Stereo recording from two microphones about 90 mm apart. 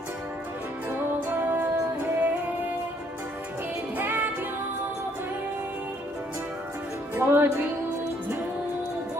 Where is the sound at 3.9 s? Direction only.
20° right (ahead or behind).